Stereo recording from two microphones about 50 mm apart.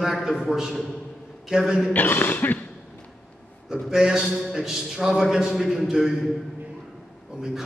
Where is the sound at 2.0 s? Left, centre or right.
Left.